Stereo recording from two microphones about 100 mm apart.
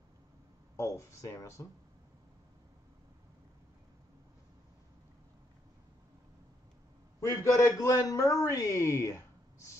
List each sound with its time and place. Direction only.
0.7 s a man's voice: 30° left (ahead or behind)
7.2 s a man's voice: 25° left (ahead or behind)